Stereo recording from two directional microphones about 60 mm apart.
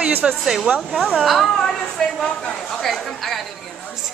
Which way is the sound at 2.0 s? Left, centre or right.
Centre.